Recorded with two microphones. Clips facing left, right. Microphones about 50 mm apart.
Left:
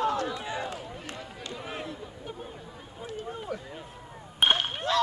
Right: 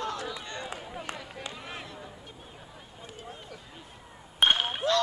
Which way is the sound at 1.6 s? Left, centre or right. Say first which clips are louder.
Left 4 dB; centre.